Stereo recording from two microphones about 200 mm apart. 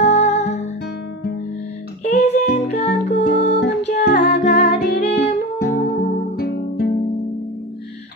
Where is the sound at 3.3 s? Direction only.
55° left (ahead or behind).